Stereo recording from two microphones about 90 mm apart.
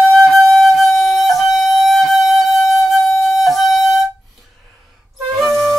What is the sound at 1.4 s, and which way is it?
Music, centre (ahead or behind).